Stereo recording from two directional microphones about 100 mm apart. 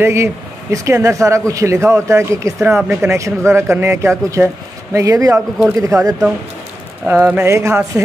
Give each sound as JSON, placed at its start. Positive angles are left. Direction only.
{"t": 0.0, "sound": "a man's voice", "side_deg": -25}
{"t": 7.1, "sound": "speech", "side_deg": -15}
{"t": 7.4, "sound": "a man's voice", "side_deg": -30}